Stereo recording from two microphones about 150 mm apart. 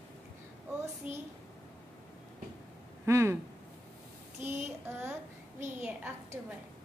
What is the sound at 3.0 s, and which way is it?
Speech, 20° right (ahead or behind).